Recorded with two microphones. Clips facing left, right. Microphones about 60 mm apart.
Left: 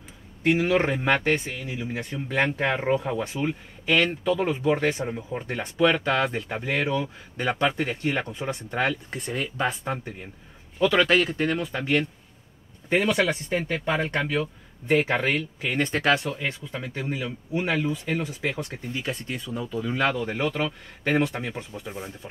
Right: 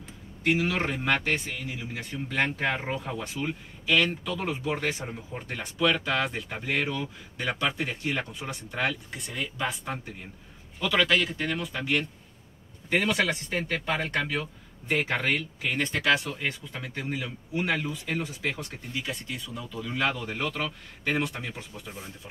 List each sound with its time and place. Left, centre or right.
0.6 s speech: left
5.0 s speech: centre
5.5 s speech: left
7.0 s speech: left
10.9 s speech: left
12.9 s speech: centre; by 16.2 s left
16.7 s speech: centre
18.2 s speech: centre
18.6 s speech: left
20.2 s speech: centre
21.1 s speech: left